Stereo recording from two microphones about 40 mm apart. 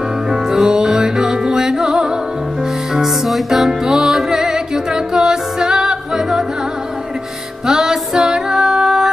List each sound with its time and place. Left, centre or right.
0.3 s music: centre
2.9 s music: centre
7.6 s music: centre